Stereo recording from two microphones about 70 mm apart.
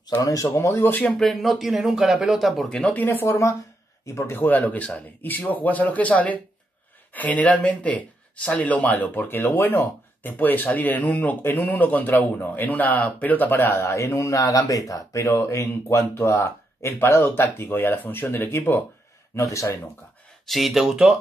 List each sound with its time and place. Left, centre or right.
0.2 s speech: left
0.7 s speech: left
1.1 s speech: centre
2.7 s speech: centre
4.0 s speech: left
15.2 s speech: left
19.3 s speech: left
20.4 s speech: centre